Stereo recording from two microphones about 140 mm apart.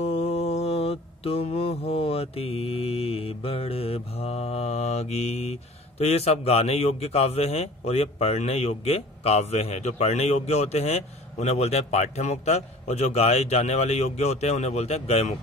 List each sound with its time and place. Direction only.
0.0 s mantra: 45° left (ahead or behind)